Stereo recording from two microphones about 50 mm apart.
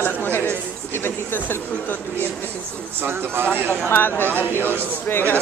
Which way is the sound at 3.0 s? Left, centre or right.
Right.